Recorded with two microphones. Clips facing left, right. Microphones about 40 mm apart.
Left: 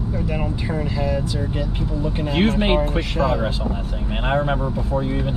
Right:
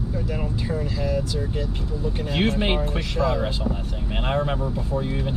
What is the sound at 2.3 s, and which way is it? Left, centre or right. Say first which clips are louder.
Speech: left 4 dB; centre.